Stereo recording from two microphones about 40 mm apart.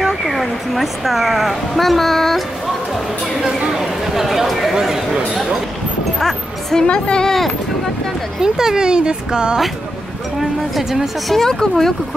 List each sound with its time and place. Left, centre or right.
0.2 s speech: centre
3.3 s speech: centre
6.1 s music: centre
6.9 s speech: left
7.2 s speech: centre
8.4 s speech: centre
10.4 s speech: centre
11.2 s speech: centre